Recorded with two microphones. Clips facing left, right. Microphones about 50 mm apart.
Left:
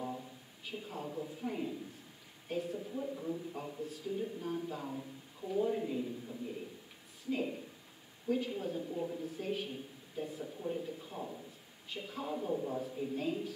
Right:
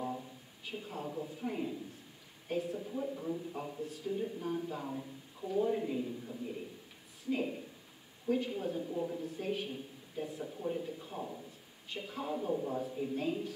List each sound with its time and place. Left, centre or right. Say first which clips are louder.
0.7 s a woman's voice: right 1 dB; centre
10.4 s speech: right 3 dB; centre